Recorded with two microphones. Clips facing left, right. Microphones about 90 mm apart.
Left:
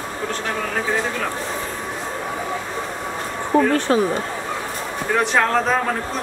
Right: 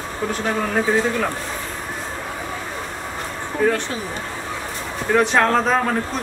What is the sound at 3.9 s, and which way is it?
Speech, 55° left (ahead or behind).